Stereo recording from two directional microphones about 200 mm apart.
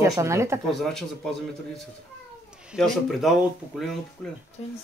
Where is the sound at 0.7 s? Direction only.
Centre (ahead or behind).